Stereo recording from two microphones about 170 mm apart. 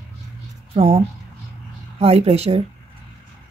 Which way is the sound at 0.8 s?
35° right (ahead or behind).